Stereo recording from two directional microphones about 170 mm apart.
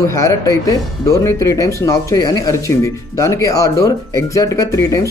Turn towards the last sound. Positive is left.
turn(degrees=20)  # may be behind; listen again after turning